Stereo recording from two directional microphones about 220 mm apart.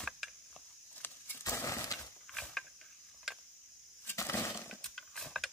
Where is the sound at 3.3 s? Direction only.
Centre (ahead or behind).